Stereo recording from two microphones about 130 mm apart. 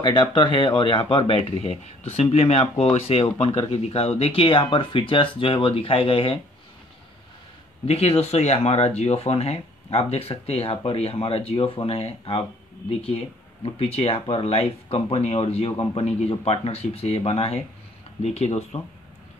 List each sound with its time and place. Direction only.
0.0 s speech: 40° left (ahead or behind)
7.8 s speech: 50° left (ahead or behind)